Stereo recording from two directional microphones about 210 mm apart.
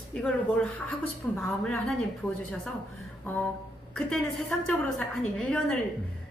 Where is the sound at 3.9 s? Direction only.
5° left (ahead or behind).